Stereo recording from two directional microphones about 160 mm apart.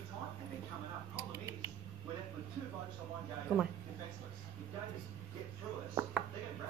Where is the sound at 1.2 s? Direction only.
15° right (ahead or behind).